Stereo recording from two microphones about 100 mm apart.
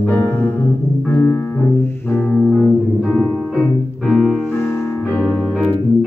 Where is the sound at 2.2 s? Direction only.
Centre (ahead or behind).